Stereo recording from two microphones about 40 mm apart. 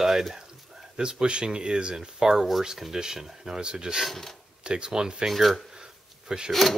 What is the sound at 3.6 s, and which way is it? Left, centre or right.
Speech, right.